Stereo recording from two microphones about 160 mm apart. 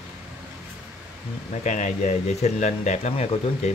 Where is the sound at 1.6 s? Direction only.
50° left (ahead or behind).